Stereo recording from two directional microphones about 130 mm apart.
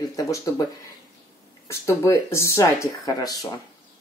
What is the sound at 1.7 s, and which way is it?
Speech, 20° left (ahead or behind).